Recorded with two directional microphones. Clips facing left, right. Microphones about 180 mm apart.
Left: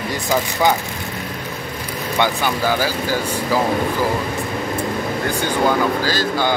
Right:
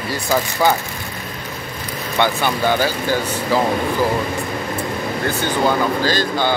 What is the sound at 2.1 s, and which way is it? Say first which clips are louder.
Speech: right 1 dB; 10° left (ahead or behind).